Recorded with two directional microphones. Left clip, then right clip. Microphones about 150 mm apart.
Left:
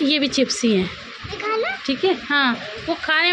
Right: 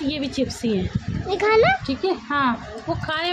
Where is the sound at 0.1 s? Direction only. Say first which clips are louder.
Left 6 dB; 15° left (ahead or behind).